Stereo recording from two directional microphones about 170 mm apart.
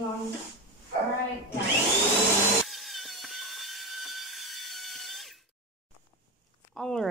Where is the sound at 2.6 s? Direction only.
Centre (ahead or behind).